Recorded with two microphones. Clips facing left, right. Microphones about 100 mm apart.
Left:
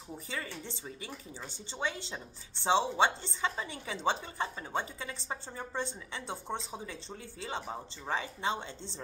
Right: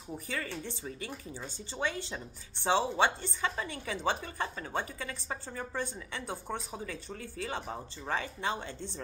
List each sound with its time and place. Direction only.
1.8 s a woman's voice: 20° left (ahead or behind)